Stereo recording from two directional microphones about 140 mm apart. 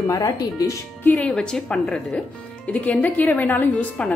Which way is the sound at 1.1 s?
5° left (ahead or behind).